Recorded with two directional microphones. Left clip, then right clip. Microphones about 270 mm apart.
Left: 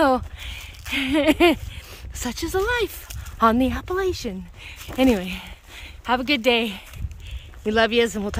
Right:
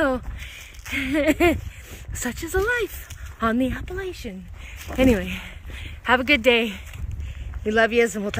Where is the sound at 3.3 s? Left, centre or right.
Centre.